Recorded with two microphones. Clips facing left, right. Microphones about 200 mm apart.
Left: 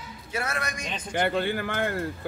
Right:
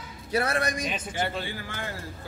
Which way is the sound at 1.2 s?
55° left (ahead or behind).